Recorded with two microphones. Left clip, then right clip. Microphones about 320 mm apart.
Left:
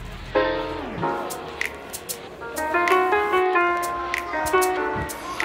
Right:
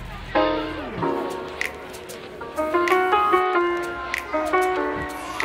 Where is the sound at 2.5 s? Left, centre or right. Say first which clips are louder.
Even; centre.